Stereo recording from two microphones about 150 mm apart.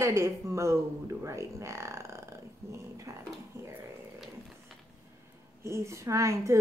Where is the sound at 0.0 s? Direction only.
20° right (ahead or behind).